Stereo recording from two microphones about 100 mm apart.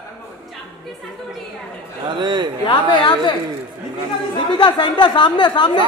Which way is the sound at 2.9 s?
50° left (ahead or behind).